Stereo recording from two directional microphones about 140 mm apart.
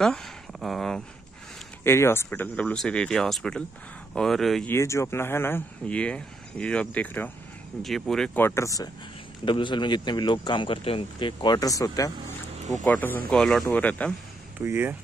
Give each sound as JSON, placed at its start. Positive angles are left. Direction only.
{"t": 0.0, "sound": "a sound", "side_deg": 5}
{"t": 1.9, "sound": "speech", "side_deg": 15}
{"t": 4.6, "sound": "speech", "side_deg": 20}
{"t": 8.4, "sound": "speech", "side_deg": 20}
{"t": 9.4, "sound": "speech", "side_deg": 35}
{"t": 12.7, "sound": "speech", "side_deg": 10}
{"t": 14.6, "sound": "speech", "side_deg": -15}